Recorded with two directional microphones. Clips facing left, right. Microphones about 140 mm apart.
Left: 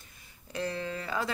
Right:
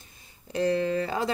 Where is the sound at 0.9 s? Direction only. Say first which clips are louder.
Right 6 dB; 35° right (ahead or behind).